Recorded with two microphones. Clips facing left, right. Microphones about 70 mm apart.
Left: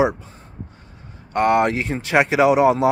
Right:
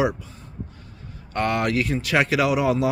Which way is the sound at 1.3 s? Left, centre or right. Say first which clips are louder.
Left 5 dB; left.